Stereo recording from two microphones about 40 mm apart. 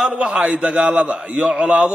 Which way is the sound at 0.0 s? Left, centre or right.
Centre.